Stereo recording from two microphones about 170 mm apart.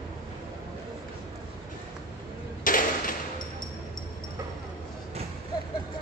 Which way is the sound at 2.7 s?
55° left (ahead or behind).